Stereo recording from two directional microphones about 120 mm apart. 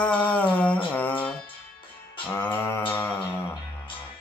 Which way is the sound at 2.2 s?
15° left (ahead or behind).